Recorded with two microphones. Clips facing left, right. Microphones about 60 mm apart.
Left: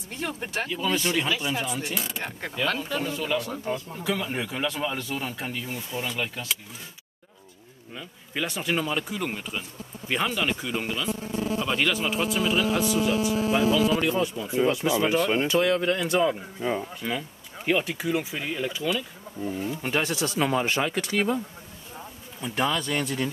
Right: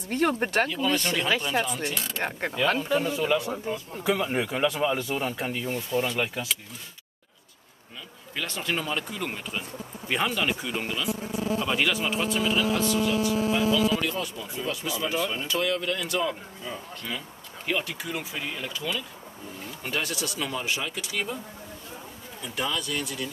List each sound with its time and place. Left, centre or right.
0.1 s speech: right
0.7 s speech: centre
8.4 s speech: centre
13.2 s speech: centre
15.1 s speech: left
15.5 s speech: left
16.6 s speech: left
17.0 s speech: left
17.6 s speech: centre; by 21.4 s left
22.4 s speech: left